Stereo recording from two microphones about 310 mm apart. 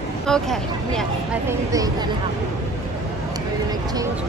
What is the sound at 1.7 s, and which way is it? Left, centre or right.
Speech, centre.